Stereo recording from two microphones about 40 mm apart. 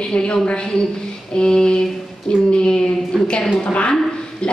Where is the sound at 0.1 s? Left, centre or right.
Left.